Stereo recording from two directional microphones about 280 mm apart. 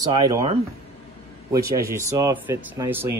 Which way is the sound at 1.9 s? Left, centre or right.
Centre.